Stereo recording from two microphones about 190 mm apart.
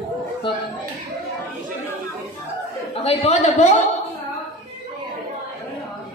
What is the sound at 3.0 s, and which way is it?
Speech, 35° left (ahead or behind).